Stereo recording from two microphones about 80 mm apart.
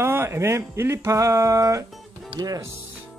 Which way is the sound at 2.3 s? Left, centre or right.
Right.